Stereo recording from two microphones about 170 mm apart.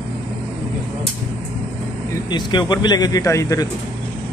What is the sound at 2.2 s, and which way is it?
Speech, 25° left (ahead or behind).